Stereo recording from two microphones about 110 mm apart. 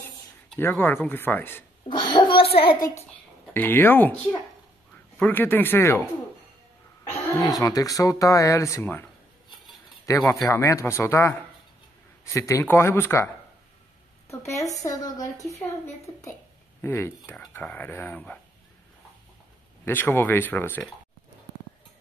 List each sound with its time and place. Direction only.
0.6 s speech: 20° left (ahead or behind)
1.9 s a child's voice: 45° left (ahead or behind)
3.5 s speech: 20° left (ahead or behind)
5.2 s speech: 20° left (ahead or behind)
7.3 s speech: 35° left (ahead or behind)
10.1 s speech: 30° left (ahead or behind)
14.4 s speech: 30° left (ahead or behind); by 18.4 s 10° left (ahead or behind)
19.8 s speech: 15° left (ahead or behind)